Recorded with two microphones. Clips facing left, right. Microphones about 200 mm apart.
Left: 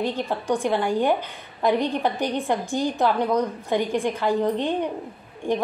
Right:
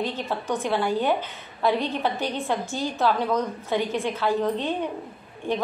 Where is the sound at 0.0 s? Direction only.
15° left (ahead or behind).